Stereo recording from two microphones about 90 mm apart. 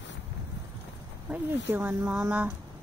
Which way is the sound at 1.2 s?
20° right (ahead or behind).